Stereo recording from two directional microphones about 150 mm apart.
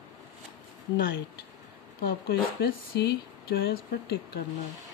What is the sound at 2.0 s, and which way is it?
Speech, 90° left.